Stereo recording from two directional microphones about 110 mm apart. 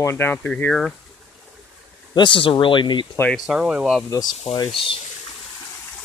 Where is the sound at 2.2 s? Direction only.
50° left (ahead or behind).